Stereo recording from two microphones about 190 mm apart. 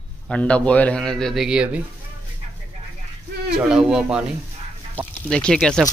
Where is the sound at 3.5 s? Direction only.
5° right (ahead or behind).